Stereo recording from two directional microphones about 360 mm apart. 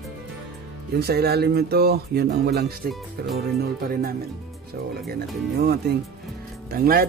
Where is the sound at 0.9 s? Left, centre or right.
Right.